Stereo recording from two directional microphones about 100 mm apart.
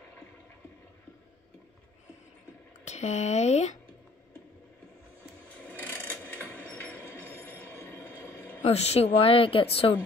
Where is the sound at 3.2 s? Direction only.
90° left.